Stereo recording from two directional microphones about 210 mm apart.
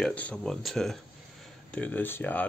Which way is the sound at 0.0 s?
5° left (ahead or behind).